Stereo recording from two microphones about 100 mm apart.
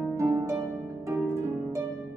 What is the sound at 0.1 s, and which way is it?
Harp, 30° right (ahead or behind).